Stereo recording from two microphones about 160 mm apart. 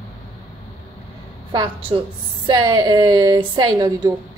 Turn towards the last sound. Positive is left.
turn(degrees=-25)  # may be behind; listen again after turning